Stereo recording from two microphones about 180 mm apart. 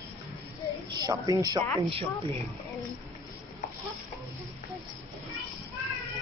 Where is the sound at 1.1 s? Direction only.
20° right (ahead or behind).